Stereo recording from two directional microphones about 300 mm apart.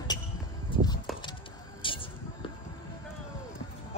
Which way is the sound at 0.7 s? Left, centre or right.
Centre.